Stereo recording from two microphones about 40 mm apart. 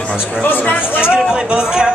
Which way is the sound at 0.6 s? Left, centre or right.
Left.